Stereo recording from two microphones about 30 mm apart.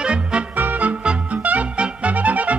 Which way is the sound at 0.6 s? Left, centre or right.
Right.